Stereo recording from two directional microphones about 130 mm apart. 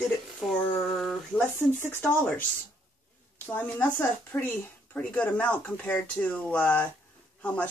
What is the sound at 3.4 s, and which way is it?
Speech, 15° left (ahead or behind).